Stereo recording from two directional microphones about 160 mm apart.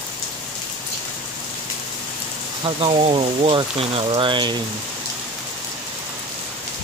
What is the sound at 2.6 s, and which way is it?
Speech, 35° right (ahead or behind).